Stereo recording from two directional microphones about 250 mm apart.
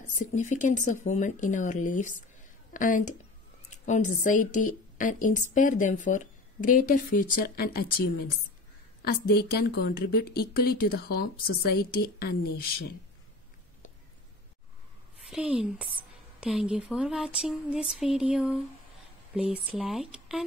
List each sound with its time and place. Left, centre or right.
0.1 s a woman's voice: left
9.0 s a woman's voice: left
15.2 s speech: centre